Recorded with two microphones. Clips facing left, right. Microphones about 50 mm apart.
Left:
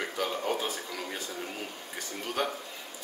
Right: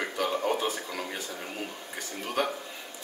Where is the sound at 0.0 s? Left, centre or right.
Centre.